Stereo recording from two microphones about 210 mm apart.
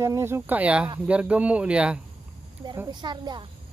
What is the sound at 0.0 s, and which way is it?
Speech, 15° right (ahead or behind).